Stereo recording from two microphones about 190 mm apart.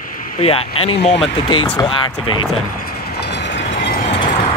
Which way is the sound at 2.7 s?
50° left (ahead or behind).